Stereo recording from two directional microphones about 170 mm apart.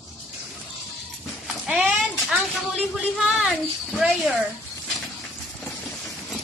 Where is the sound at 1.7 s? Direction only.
5° right (ahead or behind).